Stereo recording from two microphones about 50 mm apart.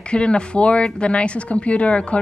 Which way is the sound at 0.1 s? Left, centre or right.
Left.